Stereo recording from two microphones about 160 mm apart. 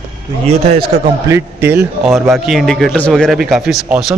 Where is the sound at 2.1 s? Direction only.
Centre (ahead or behind).